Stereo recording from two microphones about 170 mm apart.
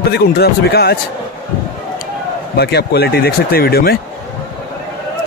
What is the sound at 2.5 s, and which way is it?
Speech, 70° left (ahead or behind).